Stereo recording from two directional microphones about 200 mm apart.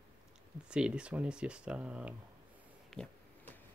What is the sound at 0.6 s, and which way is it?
Speech, 5° right (ahead or behind).